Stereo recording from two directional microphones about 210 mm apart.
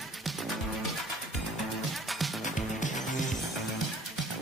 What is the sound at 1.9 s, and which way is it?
Music, centre (ahead or behind).